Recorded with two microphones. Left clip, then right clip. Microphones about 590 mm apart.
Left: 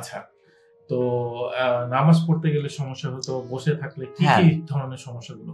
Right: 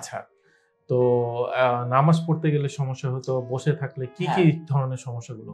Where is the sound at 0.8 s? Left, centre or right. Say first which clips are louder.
Right 3 dB; right.